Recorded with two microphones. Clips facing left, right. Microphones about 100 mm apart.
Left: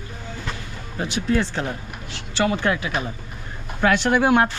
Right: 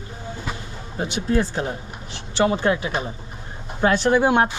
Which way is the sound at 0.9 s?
25° right (ahead or behind).